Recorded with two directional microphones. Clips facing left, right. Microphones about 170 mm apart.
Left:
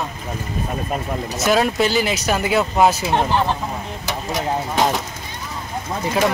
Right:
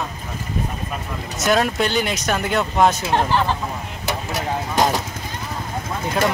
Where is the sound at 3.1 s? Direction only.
15° left (ahead or behind).